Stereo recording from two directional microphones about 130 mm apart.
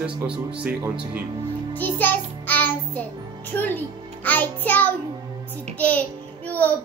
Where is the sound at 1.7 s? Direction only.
15° left (ahead or behind).